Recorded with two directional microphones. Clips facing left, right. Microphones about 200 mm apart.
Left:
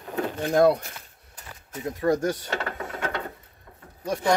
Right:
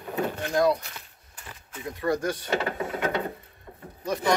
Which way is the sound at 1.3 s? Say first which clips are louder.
Left 4 dB; 40° left (ahead or behind).